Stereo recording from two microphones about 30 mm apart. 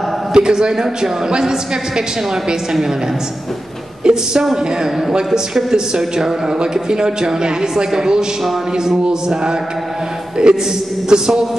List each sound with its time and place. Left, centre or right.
0.3 s a woman's voice: right
4.0 s a woman's voice: right
5.7 s a woman's voice: right
10.4 s a woman's voice: right